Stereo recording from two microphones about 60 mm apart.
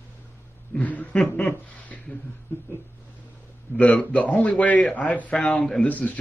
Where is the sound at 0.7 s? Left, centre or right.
Left.